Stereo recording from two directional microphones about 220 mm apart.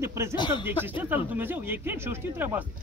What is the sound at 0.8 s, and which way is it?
Speech, 10° right (ahead or behind).